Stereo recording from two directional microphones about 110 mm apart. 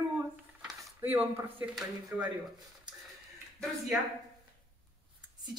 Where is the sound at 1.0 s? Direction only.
15° right (ahead or behind).